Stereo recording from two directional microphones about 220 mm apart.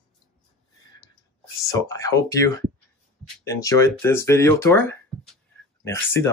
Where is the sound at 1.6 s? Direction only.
15° left (ahead or behind).